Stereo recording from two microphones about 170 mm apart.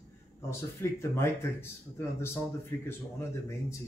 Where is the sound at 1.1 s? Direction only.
15° left (ahead or behind).